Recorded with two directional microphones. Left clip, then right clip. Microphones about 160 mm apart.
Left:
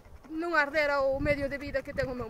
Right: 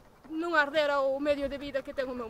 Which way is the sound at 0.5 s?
20° left (ahead or behind).